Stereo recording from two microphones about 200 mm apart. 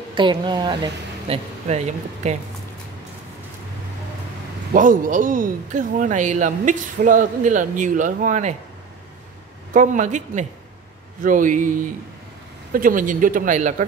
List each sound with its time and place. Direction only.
0.1 s speech: 25° right (ahead or behind)
4.7 s speech: 40° right (ahead or behind)
9.8 s speech: 40° right (ahead or behind)